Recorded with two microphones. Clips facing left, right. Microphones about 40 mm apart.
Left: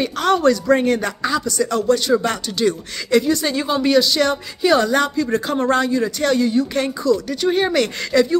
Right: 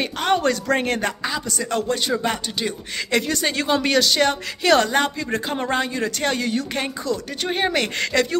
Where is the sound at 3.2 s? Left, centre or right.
Right.